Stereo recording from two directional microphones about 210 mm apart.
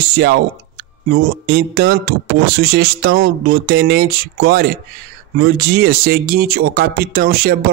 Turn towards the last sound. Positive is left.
turn(degrees=-45)  # may be behind; listen again after turning